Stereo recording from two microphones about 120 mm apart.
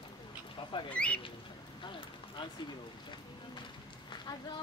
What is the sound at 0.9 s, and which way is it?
Speech, 10° left (ahead or behind).